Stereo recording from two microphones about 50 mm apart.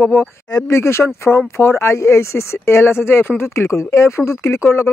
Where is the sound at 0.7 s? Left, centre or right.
Left.